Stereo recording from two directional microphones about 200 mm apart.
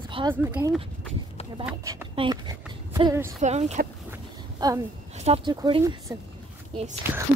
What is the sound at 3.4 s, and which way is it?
Speech, 35° right (ahead or behind).